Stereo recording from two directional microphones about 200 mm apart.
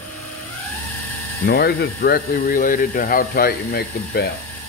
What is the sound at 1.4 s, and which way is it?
Speech, 50° left (ahead or behind).